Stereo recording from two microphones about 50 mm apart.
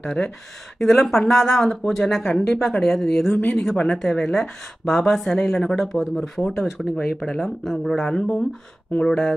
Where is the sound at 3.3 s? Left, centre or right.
Left.